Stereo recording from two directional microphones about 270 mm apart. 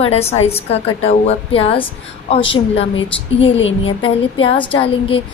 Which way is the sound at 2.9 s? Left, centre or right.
Left.